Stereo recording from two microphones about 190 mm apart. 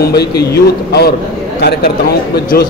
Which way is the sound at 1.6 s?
55° left (ahead or behind).